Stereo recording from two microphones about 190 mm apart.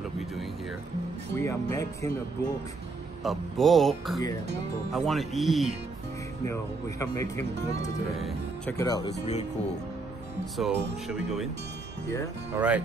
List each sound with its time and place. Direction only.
1.3 s speech: 15° left (ahead or behind)
3.3 s music: centre (ahead or behind)
6.4 s speech: 15° left (ahead or behind)
8.7 s speech: 20° left (ahead or behind)
9.2 s speech: 35° left (ahead or behind)
10.6 s music: 5° right (ahead or behind)
12.5 s speech: 10° right (ahead or behind)